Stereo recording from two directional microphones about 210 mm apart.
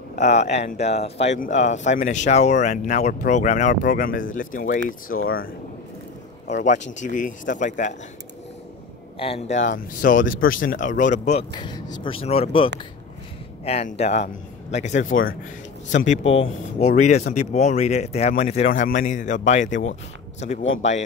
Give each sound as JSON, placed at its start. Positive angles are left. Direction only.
{"t": 0.1, "sound": "speech", "side_deg": 35}
{"t": 9.2, "sound": "speech", "side_deg": 30}
{"t": 11.5, "sound": "speech", "side_deg": 20}